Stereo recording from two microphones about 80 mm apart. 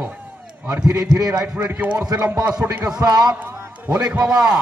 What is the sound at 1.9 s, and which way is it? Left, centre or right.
Speech, right.